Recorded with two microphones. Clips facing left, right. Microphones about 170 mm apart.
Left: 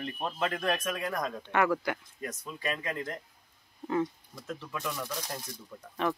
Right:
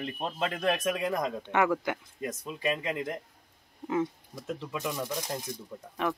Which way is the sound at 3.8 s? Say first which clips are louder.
Right 1 dB; 5° right (ahead or behind).